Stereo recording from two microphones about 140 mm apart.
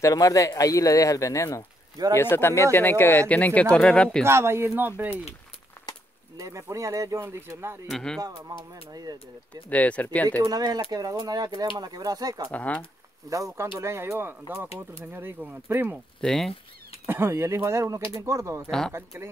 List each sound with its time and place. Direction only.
0.0 s speech: 25° left (ahead or behind); by 4.2 s 5° left (ahead or behind)
4.2 s speech: 20° right (ahead or behind)
5.8 s a sound: 15° left (ahead or behind)
6.3 s speech: 25° right (ahead or behind)
7.9 s speech: 5° left (ahead or behind)
8.2 s speech: 25° right (ahead or behind)
9.7 s speech: 10° left (ahead or behind)
10.4 s speech: 25° right (ahead or behind)
12.5 s speech: 10° left (ahead or behind)
13.3 s speech: 20° right (ahead or behind)
16.2 s speech: centre (ahead or behind)
17.0 s speech: 15° right (ahead or behind)